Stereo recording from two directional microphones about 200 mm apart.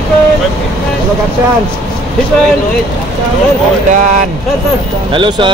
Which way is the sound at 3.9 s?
40° right (ahead or behind).